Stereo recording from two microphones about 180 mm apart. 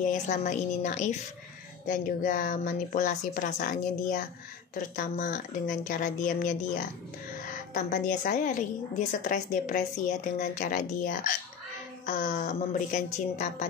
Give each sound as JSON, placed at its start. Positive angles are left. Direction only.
{"t": 0.0, "sound": "a woman's voice", "side_deg": 45}